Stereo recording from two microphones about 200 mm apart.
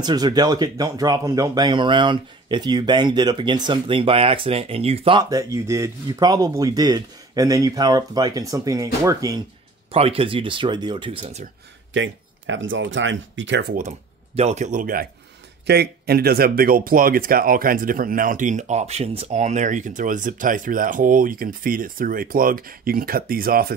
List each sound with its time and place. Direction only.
0.0 s speech: 20° right (ahead or behind)
9.9 s speech: 30° right (ahead or behind)
11.9 s speech: 70° right (ahead or behind)
13.7 s speech: 35° right (ahead or behind)
15.6 s speech: 55° right (ahead or behind)